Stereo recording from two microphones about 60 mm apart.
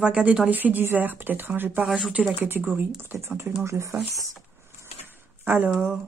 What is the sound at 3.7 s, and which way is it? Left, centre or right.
Speech, right.